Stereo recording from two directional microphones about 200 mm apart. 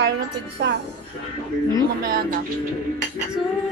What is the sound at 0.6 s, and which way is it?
Speech, 55° right (ahead or behind).